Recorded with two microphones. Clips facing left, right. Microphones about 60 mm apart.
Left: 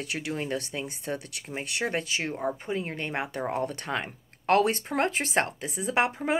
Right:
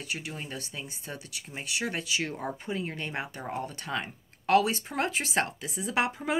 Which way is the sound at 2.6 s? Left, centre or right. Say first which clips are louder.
Left 2 dB; left.